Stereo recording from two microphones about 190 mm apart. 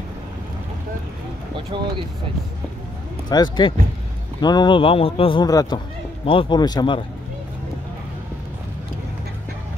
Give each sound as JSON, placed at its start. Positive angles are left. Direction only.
{"t": 1.7, "sound": "speech", "side_deg": -25}
{"t": 3.3, "sound": "a man's voice", "side_deg": 25}